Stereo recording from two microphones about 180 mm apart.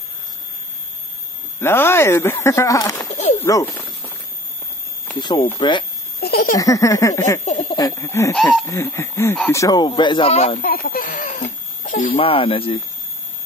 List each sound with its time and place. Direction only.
1.6 s speech: 15° left (ahead or behind)
5.1 s speech: 25° left (ahead or behind)
6.2 s baby laughter: 60° left (ahead or behind)
6.5 s speech: 20° left (ahead or behind)
8.4 s speech: centre (ahead or behind)
8.6 s speech: 15° left (ahead or behind); by 10.6 s 35° left (ahead or behind)
10.6 s speech: 55° left (ahead or behind)
12.2 s speech: 30° left (ahead or behind)